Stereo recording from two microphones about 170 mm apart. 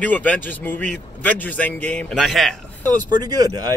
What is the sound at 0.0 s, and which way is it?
A man's voice, 10° left (ahead or behind).